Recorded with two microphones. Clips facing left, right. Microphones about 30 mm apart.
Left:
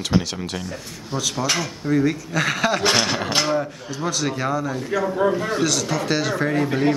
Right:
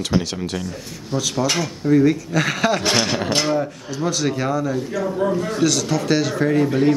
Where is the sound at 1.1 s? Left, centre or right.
Centre.